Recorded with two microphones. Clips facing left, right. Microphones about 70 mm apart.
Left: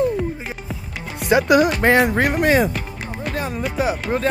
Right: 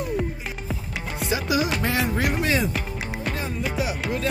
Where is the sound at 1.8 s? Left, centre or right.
Left.